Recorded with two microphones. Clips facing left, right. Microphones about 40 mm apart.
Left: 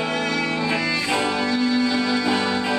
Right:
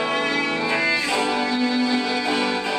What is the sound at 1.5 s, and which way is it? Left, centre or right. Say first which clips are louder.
Music: left 1 dB; centre.